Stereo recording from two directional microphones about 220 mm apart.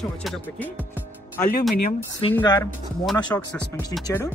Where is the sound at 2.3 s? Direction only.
15° left (ahead or behind).